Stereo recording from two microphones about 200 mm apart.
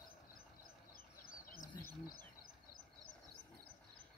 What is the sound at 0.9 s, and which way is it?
Bird, 45° left (ahead or behind).